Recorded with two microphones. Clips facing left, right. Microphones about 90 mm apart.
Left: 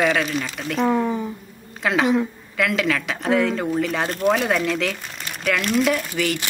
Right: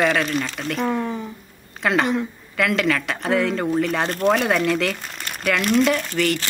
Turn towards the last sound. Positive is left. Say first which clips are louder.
# right 1 dB
turn(degrees=5)  # may be behind; listen again after turning